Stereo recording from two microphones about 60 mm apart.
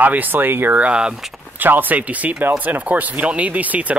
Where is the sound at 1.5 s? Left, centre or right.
Right.